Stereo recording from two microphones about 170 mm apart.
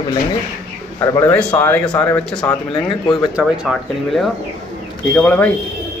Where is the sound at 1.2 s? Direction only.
10° left (ahead or behind).